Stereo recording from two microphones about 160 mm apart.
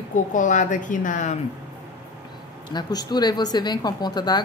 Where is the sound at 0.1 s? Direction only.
55° left (ahead or behind).